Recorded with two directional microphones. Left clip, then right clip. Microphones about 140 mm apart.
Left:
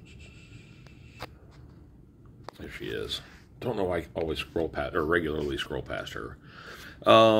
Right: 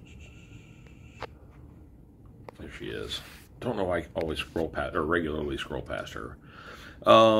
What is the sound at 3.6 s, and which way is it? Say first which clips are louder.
Speech: even; 15° left (ahead or behind).